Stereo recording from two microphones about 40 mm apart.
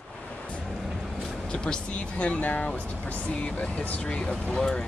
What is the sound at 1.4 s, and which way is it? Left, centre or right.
Speech, left.